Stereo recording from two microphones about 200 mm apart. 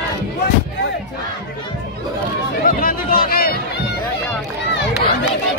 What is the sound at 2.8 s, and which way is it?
Music, 45° left (ahead or behind).